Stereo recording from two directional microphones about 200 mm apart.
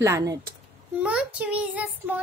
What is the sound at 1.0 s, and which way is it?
A child's voice, 5° right (ahead or behind).